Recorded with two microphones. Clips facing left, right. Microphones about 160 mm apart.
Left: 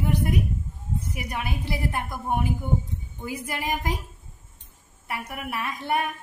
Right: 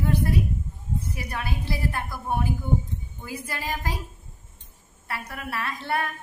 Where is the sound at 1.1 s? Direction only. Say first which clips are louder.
Left 1 dB; 15° left (ahead or behind).